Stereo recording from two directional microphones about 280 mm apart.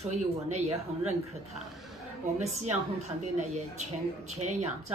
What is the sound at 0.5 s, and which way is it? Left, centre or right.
Speech, right.